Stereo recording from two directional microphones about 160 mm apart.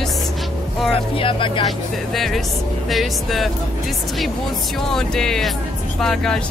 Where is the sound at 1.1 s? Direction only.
35° left (ahead or behind).